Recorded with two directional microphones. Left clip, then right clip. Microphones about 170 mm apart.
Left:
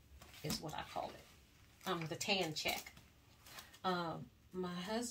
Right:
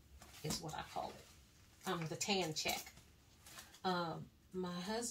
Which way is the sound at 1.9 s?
40° left (ahead or behind).